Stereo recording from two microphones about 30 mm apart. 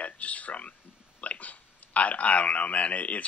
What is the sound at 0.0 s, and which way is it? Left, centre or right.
Speech, left.